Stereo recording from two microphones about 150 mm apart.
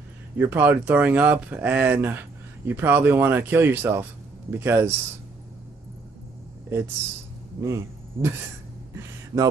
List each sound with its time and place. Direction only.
0.4 s speech: 15° right (ahead or behind)
7.6 s speech: 20° right (ahead or behind)
8.9 s a sound: 20° right (ahead or behind)